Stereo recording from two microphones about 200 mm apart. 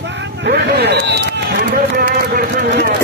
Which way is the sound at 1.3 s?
50° right (ahead or behind).